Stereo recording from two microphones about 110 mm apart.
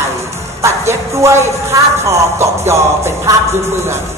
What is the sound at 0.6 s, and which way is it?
Speech, 25° right (ahead or behind).